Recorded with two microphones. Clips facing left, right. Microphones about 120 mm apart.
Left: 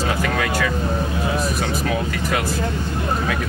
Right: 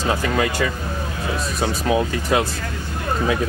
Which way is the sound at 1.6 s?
20° right (ahead or behind).